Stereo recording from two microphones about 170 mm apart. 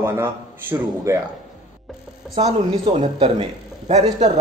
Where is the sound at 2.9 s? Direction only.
35° right (ahead or behind).